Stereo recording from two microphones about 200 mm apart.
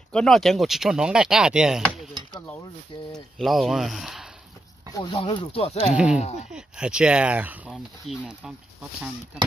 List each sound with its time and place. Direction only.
0.1 s speech: 5° left (ahead or behind)
2.3 s dishes: 15° left (ahead or behind)
2.9 s speech: 25° left (ahead or behind)
3.3 s speech: centre (ahead or behind)
5.1 s speech: 25° left (ahead or behind)
6.5 s speech: 5° right (ahead or behind)